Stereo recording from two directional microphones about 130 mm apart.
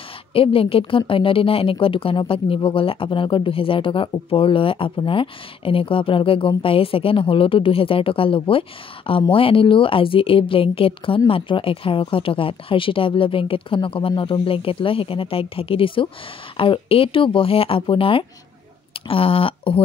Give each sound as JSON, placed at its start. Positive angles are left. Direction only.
{"t": 0.3, "sound": "a woman's voice", "side_deg": 45}